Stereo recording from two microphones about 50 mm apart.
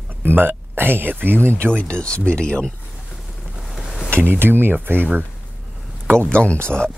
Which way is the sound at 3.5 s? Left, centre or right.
Centre.